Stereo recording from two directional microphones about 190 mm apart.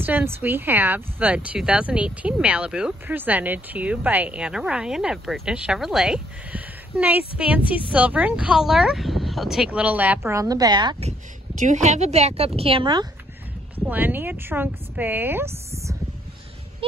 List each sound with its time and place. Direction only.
0.0 s speech: 10° right (ahead or behind)
11.6 s a woman's voice: 40° right (ahead or behind)
13.7 s speech: 10° right (ahead or behind)